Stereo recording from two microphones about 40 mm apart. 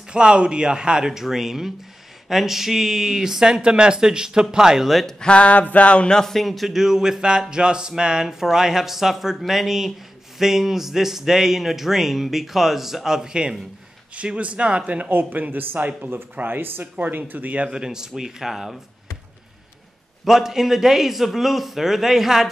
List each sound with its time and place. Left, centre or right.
0.1 s speech: right; by 5.0 s centre
5.2 s a sound: left
6.0 s speech: centre
6.3 s speech: centre
14.1 s speech: right
15.0 s speech: right
15.6 s speech: right
17.3 s speech: right
17.6 s speech: centre
20.2 s a man's voice: centre